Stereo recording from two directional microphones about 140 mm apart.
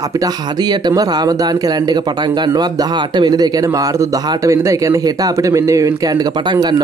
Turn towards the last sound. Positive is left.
turn(degrees=-20)  # may be behind; listen again after turning